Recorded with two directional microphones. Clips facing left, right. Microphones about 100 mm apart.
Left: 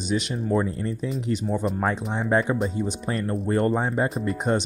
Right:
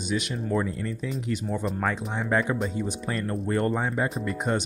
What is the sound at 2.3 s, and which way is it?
Speech, 25° left (ahead or behind).